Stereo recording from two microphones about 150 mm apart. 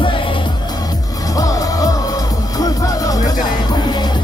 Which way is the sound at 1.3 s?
25° left (ahead or behind).